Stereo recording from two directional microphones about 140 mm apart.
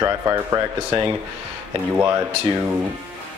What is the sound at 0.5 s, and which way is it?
Speech, 30° right (ahead or behind).